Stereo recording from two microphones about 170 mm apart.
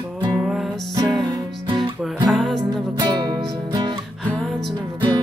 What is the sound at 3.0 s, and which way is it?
Music, 25° right (ahead or behind).